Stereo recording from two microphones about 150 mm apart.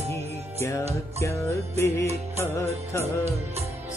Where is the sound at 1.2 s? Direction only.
20° left (ahead or behind).